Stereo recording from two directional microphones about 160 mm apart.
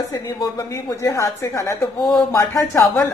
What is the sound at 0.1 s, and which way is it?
A woman's voice, 25° left (ahead or behind).